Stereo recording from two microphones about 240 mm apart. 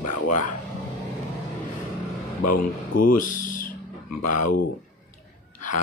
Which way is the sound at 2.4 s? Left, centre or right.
Left.